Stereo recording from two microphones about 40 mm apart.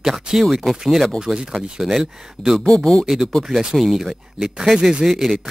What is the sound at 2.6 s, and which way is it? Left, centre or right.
Speech, centre.